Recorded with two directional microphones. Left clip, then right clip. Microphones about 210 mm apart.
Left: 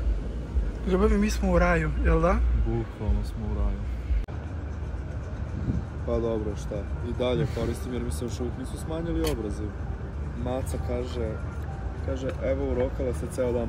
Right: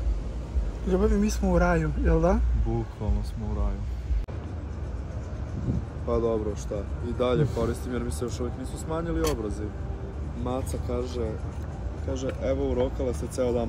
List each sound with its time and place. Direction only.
0.8 s a man's voice: 10° right (ahead or behind)
1.4 s speech: 20° right (ahead or behind)
1.8 s a man's voice: 5° right (ahead or behind)
6.0 s speech: 5° right (ahead or behind)